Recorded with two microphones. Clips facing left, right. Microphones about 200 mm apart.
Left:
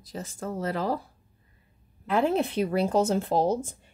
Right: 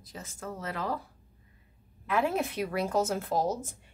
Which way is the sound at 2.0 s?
30° left (ahead or behind).